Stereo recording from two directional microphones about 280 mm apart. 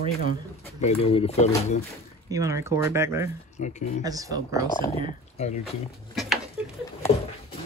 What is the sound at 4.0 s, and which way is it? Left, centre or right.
Speech, centre.